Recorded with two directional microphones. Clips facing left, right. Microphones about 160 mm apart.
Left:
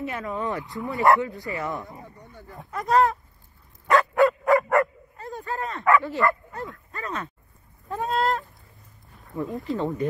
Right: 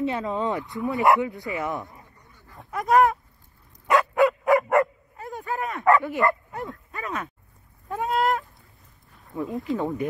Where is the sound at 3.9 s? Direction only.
Centre (ahead or behind).